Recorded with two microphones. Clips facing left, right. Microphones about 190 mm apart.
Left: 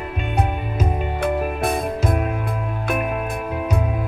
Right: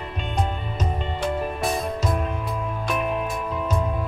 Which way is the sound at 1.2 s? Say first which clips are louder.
Left 4 dB; 55° left (ahead or behind).